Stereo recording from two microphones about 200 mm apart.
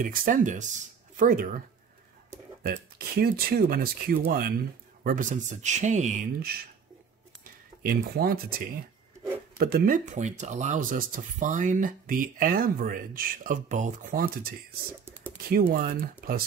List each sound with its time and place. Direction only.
0.0 s speech: 45° right (ahead or behind)
2.6 s speech: 55° right (ahead or behind)
7.8 s speech: 45° right (ahead or behind)
15.5 s speech: 50° right (ahead or behind)